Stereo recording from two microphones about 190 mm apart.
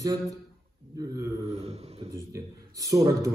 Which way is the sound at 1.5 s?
35° right (ahead or behind).